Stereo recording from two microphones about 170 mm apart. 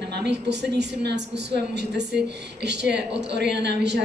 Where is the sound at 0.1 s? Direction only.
85° right.